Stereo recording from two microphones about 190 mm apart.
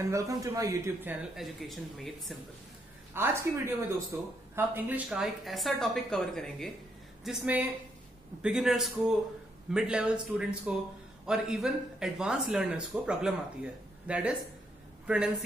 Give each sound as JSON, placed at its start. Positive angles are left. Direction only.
{"t": 0.1, "sound": "speech", "side_deg": -15}
{"t": 1.3, "sound": "speech", "side_deg": 0}
{"t": 3.2, "sound": "speech", "side_deg": -15}